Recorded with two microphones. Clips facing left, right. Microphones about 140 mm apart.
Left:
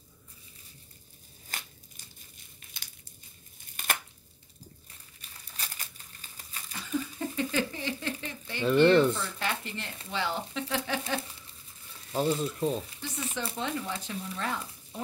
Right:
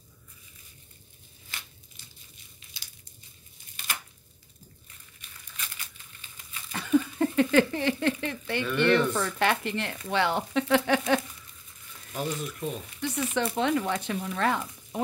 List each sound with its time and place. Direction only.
1.5 s tearing: 45° left (ahead or behind)
2.6 s a sound: 55° left (ahead or behind)
5.3 s crumpling: 35° left (ahead or behind)
6.7 s speech: 65° right (ahead or behind)
12.1 s speech: 30° left (ahead or behind)
13.0 s speech: 70° right (ahead or behind)